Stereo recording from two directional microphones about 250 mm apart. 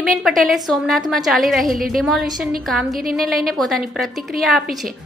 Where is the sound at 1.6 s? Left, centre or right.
Right.